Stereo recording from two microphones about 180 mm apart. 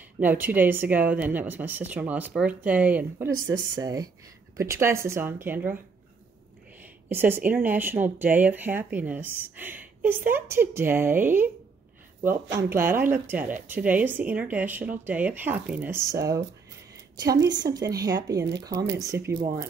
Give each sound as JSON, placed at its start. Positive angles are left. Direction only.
{"t": 0.2, "sound": "speech", "side_deg": -10}
{"t": 3.3, "sound": "speech", "side_deg": -20}
{"t": 6.8, "sound": "speech", "side_deg": -10}
{"t": 12.5, "sound": "speech", "side_deg": -15}